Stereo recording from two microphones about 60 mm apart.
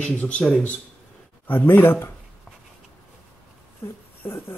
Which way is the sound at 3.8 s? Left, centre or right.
Left.